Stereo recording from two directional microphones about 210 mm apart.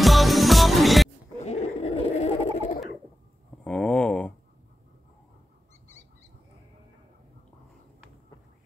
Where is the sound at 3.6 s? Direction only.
5° left (ahead or behind).